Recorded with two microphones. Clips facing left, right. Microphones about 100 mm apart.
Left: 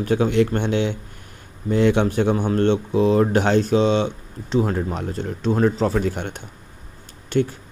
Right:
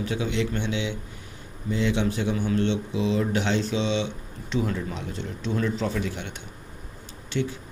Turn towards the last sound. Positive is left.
turn(degrees=50)  # may be behind; listen again after turning